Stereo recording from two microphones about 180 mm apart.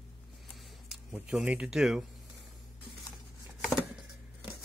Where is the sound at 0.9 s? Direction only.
5° right (ahead or behind).